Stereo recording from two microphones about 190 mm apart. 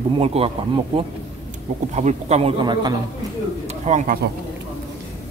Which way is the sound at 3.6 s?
35° right (ahead or behind).